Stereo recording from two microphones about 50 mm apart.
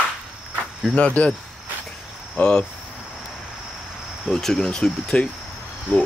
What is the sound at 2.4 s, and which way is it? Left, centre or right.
Speech, centre.